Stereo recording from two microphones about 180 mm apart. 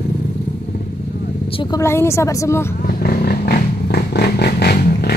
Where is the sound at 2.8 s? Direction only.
55° left (ahead or behind).